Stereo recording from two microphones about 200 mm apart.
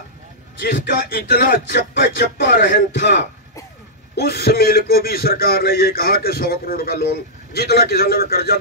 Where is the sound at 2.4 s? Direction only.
60° left (ahead or behind).